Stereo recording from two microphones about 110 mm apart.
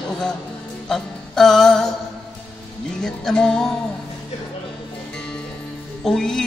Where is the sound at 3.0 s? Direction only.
5° left (ahead or behind).